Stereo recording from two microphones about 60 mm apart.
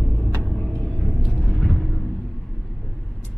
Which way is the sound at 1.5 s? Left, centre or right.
Centre.